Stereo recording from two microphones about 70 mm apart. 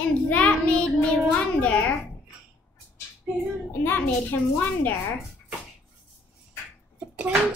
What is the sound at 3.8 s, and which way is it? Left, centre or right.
A woman's voice, left.